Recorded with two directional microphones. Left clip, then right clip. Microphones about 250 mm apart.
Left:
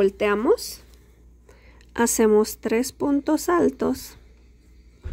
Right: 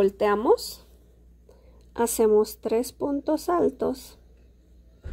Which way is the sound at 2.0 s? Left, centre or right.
Centre.